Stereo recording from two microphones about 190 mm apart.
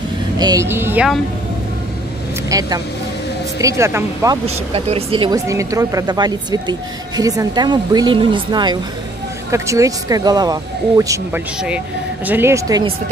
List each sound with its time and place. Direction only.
0.4 s speech: 20° right (ahead or behind)
2.5 s speech: 20° right (ahead or behind)
4.7 s speech: 30° right (ahead or behind)
5.5 s speech: 15° right (ahead or behind)